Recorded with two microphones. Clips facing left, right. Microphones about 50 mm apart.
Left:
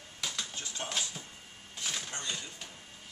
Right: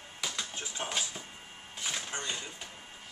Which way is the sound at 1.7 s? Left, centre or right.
Centre.